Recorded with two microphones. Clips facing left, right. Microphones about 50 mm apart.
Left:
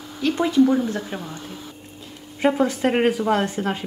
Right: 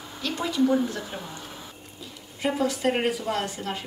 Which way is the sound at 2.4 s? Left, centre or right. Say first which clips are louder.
Left 6 dB; left.